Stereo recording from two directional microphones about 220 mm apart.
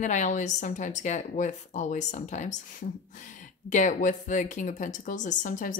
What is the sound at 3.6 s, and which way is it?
Speech, 35° left (ahead or behind).